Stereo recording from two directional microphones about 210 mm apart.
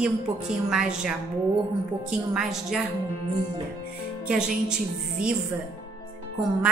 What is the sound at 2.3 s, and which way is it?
Speech, centre (ahead or behind).